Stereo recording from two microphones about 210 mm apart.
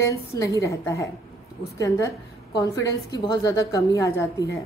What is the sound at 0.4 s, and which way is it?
A woman's voice, 15° left (ahead or behind).